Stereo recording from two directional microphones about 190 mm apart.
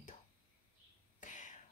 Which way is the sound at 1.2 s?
40° left (ahead or behind).